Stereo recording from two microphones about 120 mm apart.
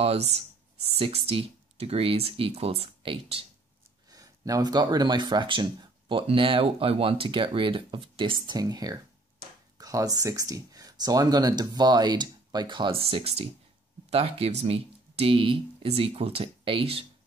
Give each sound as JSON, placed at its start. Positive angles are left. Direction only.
{"t": 0.0, "sound": "speech", "side_deg": -60}
{"t": 4.1, "sound": "speech", "side_deg": -30}